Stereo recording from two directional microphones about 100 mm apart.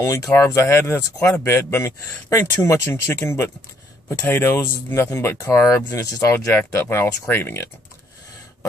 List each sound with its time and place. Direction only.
0.0 s speech: 30° left (ahead or behind)